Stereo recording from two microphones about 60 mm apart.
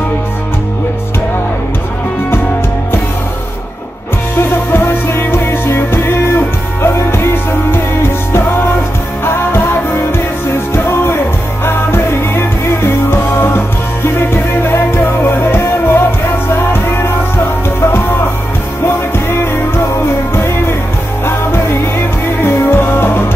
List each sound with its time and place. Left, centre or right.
4.4 s music: left
9.2 s music: left
18.9 s music: left